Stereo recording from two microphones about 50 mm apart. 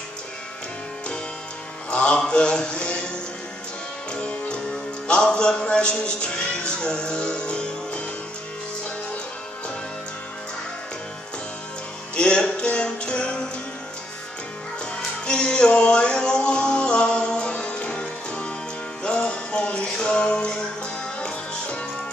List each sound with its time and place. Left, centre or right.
1.9 s mantra: left
4.1 s music: left
12.2 s music: centre
15.2 s music: centre